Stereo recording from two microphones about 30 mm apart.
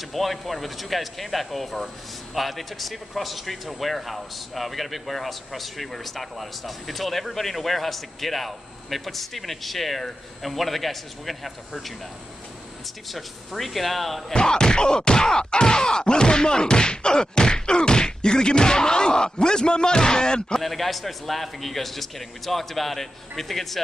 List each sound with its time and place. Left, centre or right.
0.0 s speech: centre
13.1 s speech: centre
14.3 s a sound: left
20.6 s speech: centre